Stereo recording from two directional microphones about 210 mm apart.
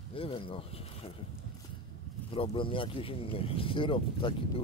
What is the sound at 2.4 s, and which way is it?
Speech, 25° left (ahead or behind).